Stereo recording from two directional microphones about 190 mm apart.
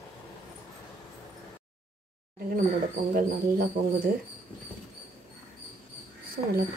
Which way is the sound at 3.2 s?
50° right (ahead or behind).